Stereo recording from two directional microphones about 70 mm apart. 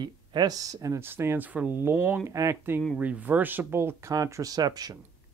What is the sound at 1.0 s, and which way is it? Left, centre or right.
Speech, right.